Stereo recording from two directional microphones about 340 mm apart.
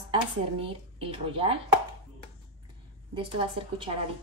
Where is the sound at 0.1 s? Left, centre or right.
Centre.